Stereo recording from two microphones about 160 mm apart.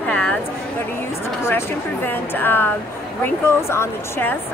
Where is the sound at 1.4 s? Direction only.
15° left (ahead or behind).